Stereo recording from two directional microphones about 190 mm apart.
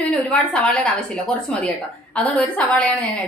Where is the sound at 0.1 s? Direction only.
5° left (ahead or behind).